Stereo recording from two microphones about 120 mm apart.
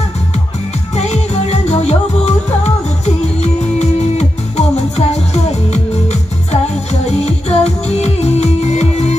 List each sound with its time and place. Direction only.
0.9 s music: 65° left (ahead or behind)